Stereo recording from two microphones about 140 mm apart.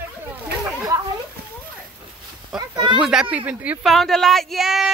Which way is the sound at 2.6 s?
30° right (ahead or behind).